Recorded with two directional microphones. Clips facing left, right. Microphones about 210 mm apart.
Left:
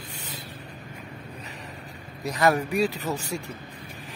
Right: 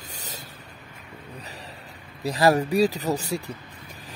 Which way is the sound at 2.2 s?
30° right (ahead or behind).